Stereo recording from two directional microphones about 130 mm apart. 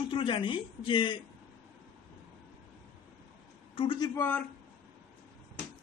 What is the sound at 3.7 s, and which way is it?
Speech, 40° left (ahead or behind).